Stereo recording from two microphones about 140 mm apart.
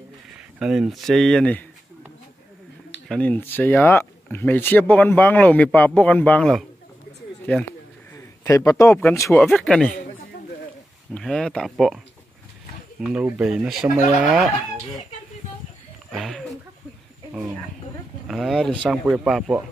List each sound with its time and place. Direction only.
0.6 s speech: 5° right (ahead or behind)
3.1 s speech: 10° left (ahead or behind)
8.1 s a sound: 20° left (ahead or behind)
9.1 s speech: 20° left (ahead or behind)
9.4 s speech: 5° left (ahead or behind)
11.1 s speech: 5° left (ahead or behind)
13.0 s speech: 5° right (ahead or behind)
16.1 s a sound: centre (ahead or behind)
18.3 s speech: centre (ahead or behind)